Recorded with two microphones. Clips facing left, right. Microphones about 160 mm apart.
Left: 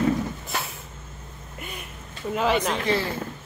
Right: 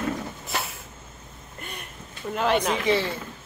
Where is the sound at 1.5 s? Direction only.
5° left (ahead or behind).